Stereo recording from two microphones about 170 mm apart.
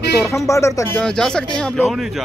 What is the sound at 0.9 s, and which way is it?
Speech, 5° left (ahead or behind).